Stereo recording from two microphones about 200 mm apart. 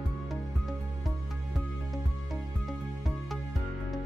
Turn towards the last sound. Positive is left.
turn(degrees=0)  # may be behind; listen again after turning